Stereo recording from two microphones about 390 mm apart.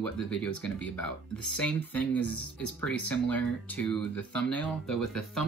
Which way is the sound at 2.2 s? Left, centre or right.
Left.